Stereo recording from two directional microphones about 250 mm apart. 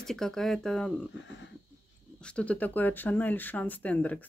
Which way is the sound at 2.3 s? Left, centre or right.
Centre.